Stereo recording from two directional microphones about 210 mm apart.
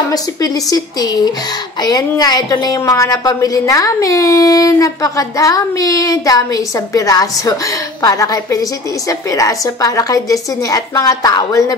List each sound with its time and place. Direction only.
0.1 s a woman's voice: 20° left (ahead or behind)